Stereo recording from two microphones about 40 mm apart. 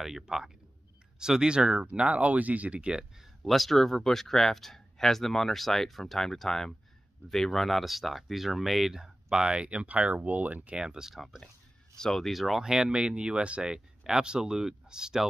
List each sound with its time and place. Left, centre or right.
0.0 s speech: centre
1.9 s speech: right
2.8 s speech: centre
3.4 s speech: centre; by 10.8 s right
10.8 s speech: centre
12.0 s speech: centre
12.3 s speech: centre
12.6 s speech: centre